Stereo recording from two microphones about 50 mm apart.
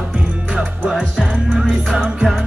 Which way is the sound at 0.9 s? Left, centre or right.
Centre.